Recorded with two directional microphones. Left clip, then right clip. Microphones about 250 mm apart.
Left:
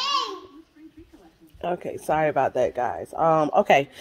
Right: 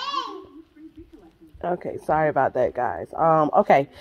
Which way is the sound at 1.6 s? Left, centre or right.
Centre.